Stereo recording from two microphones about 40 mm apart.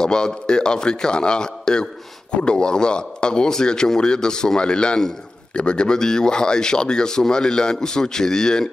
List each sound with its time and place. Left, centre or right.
0.0 s a man's voice: centre